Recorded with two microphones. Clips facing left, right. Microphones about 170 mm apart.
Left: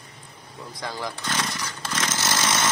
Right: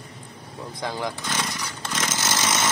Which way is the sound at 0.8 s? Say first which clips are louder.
Right 3 dB; 20° right (ahead or behind).